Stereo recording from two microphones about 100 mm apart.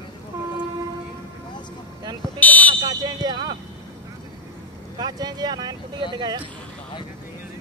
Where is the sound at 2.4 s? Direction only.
15° left (ahead or behind).